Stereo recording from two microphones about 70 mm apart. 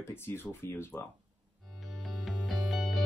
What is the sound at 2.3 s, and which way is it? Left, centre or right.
Music, centre.